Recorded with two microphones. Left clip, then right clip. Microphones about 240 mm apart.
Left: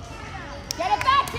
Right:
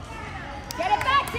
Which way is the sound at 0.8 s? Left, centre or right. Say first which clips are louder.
Left 1 dB; left.